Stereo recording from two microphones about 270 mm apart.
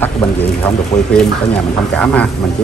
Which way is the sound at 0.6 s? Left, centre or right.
Centre.